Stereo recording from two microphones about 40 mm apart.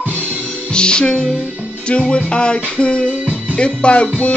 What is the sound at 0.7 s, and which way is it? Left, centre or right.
Music, left.